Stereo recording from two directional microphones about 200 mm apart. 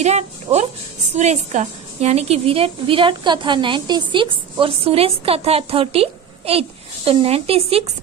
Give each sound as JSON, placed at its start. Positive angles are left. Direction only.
{"t": 0.0, "sound": "a child's voice", "side_deg": -35}